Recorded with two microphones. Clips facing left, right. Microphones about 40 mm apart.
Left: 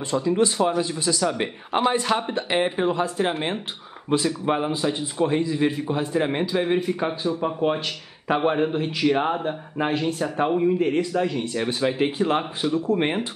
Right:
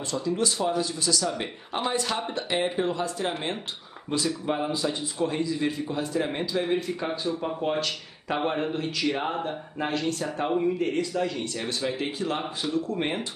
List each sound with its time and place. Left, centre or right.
0.1 s a man's voice: left